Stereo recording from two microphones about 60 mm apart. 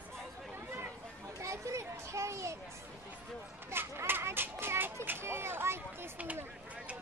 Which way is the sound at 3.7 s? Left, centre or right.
Right.